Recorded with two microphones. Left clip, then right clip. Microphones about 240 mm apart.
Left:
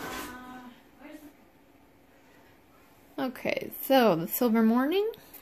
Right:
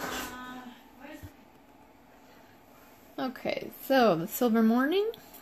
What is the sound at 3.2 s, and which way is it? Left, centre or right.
A woman's voice, left.